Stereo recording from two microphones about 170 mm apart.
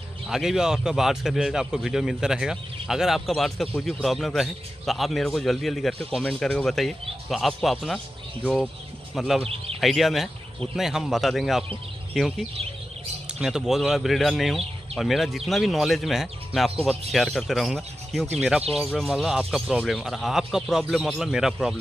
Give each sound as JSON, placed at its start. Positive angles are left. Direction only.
{"t": 0.3, "sound": "a man's voice", "side_deg": -5}
{"t": 9.1, "sound": "speech", "side_deg": 0}
{"t": 9.4, "sound": "speech", "side_deg": -35}
{"t": 9.8, "sound": "a man's voice", "side_deg": 0}